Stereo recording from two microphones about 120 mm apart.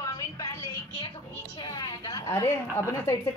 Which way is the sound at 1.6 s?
35° left (ahead or behind).